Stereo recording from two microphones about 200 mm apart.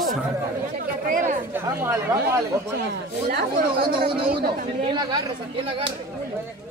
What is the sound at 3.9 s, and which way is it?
Speech, 25° right (ahead or behind).